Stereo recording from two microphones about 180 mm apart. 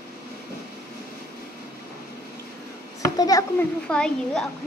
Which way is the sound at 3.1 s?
20° left (ahead or behind).